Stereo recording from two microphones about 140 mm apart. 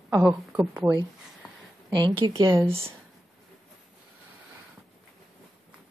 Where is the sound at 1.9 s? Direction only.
30° right (ahead or behind).